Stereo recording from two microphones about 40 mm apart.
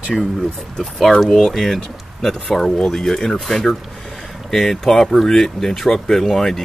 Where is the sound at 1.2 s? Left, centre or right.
Centre.